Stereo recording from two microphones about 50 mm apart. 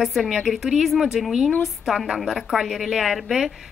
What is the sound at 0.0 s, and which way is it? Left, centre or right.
Speech, centre.